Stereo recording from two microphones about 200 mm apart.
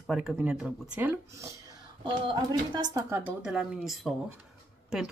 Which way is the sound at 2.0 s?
25° right (ahead or behind).